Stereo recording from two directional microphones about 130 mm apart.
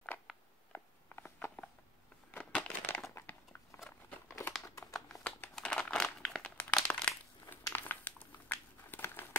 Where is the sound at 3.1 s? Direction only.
20° left (ahead or behind).